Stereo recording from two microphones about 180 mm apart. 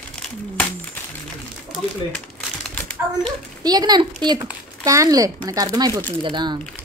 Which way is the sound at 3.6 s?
20° right (ahead or behind).